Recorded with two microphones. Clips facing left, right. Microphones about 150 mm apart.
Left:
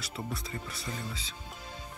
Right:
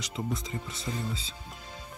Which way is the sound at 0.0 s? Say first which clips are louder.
Right 4 dB; 20° right (ahead or behind).